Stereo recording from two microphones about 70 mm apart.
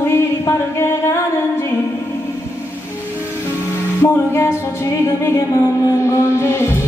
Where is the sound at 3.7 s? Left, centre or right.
Left.